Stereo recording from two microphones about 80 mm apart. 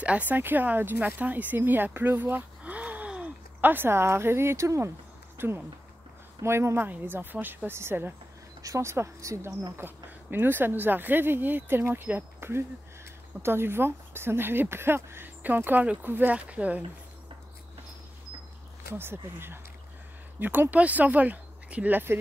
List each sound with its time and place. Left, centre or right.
0.0 s speech: centre; by 4.9 s right
5.4 s speech: right
9.8 s speech: right
18.9 s speech: right